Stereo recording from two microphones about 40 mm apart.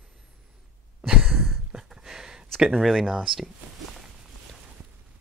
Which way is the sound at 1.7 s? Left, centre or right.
Centre.